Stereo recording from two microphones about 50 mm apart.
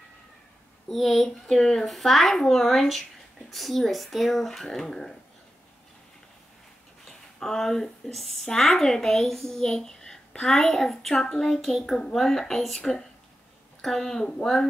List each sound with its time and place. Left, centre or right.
0.8 s speech: centre
1.5 s a child's voice: centre
7.1 s a child's voice: centre